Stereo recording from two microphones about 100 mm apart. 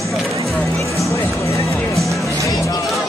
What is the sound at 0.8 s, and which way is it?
Music, 30° left (ahead or behind).